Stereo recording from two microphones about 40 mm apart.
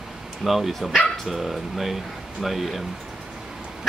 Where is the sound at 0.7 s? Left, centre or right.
Centre.